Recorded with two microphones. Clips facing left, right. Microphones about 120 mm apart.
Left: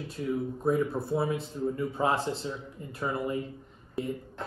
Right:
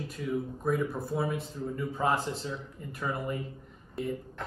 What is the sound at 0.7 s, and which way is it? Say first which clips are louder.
Speech: left 3 dB; 30° left (ahead or behind).